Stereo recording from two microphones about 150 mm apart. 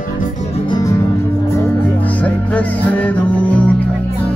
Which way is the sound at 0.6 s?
25° left (ahead or behind).